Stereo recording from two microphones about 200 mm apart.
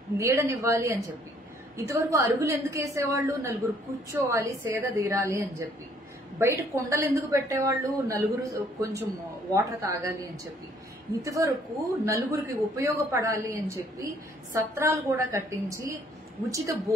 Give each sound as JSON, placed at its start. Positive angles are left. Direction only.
{"t": 0.2, "sound": "speech", "side_deg": -15}